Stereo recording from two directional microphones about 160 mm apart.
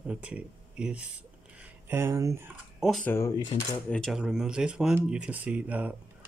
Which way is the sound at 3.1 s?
15° left (ahead or behind).